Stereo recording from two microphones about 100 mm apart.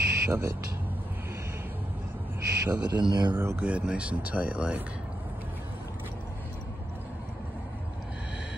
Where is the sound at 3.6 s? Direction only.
15° right (ahead or behind).